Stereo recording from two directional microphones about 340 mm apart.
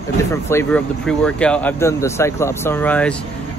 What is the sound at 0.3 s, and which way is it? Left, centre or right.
Speech, centre.